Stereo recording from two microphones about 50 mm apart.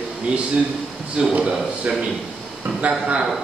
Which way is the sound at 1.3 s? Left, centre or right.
Centre.